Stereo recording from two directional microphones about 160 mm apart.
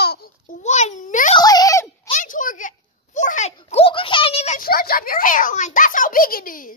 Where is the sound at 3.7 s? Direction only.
35° left (ahead or behind).